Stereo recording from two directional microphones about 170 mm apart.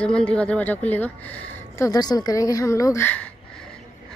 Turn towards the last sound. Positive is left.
turn(degrees=10)  # may be behind; listen again after turning